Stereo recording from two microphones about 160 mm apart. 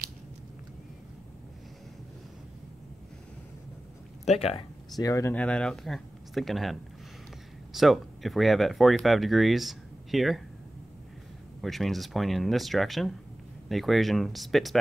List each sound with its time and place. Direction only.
4.3 s speech: 35° left (ahead or behind)
4.9 s speech: 20° left (ahead or behind)
5.3 s speech: 5° left (ahead or behind)
11.6 s speech: centre (ahead or behind)